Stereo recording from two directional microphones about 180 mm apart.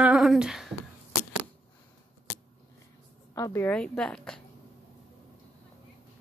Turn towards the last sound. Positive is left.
turn(degrees=5)  # may be behind; listen again after turning